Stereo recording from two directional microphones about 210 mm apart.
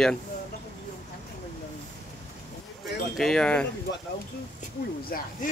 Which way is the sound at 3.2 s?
Centre (ahead or behind).